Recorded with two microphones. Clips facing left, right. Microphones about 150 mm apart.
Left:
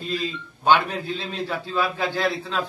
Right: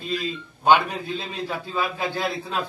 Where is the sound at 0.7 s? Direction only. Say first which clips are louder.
Right 1 dB; 10° right (ahead or behind).